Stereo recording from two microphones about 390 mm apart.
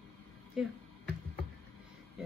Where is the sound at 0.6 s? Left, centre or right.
Centre.